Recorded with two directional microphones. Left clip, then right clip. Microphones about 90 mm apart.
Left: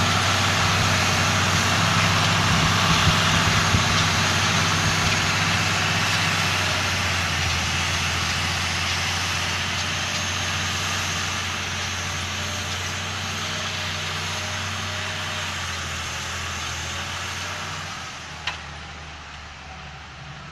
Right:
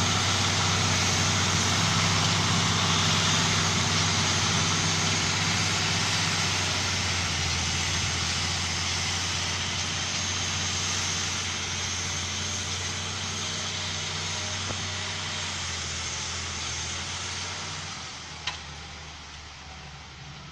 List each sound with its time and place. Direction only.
0.0 s vehicle: 20° left (ahead or behind)